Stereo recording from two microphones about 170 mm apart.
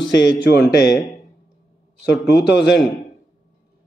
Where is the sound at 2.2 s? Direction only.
80° left.